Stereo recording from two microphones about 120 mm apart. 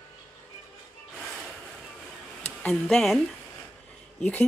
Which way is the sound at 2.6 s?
5° left (ahead or behind).